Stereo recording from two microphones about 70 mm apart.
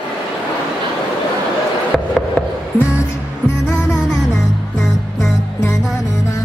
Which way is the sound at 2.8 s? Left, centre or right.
Left.